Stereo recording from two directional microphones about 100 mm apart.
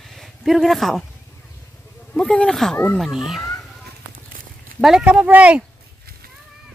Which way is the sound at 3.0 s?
Centre (ahead or behind).